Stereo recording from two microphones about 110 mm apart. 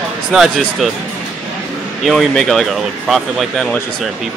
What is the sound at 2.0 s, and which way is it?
Speech, centre (ahead or behind).